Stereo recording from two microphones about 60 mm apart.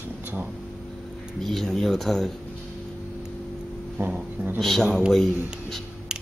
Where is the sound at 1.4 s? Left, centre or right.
Centre.